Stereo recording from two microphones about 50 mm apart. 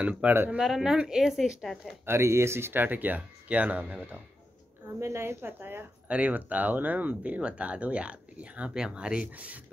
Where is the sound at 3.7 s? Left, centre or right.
Right.